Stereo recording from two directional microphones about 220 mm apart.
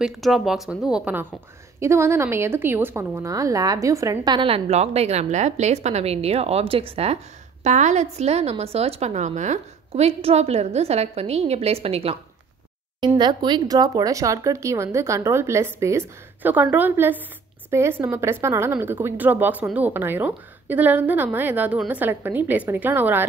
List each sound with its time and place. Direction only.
0.0 s a woman's voice: centre (ahead or behind)